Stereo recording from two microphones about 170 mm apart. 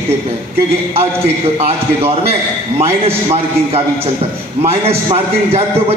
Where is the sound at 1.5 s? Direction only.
35° right (ahead or behind).